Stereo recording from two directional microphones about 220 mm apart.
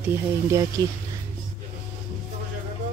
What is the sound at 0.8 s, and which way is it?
Speech, 15° right (ahead or behind).